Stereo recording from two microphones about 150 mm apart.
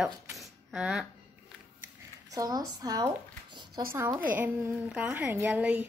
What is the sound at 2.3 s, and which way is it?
A woman's voice, 25° right (ahead or behind).